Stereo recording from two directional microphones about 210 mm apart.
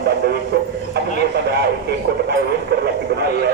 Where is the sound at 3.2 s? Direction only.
45° right (ahead or behind).